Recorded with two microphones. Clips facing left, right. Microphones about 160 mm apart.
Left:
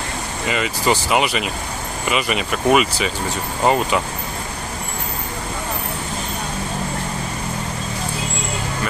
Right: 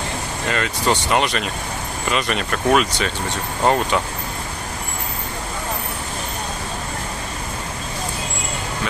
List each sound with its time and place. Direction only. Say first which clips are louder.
0.5 s speech: left 1 dB; 5° left (ahead or behind)